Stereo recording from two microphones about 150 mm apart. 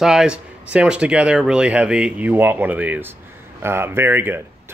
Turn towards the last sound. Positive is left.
turn(degrees=-15)  # may be behind; listen again after turning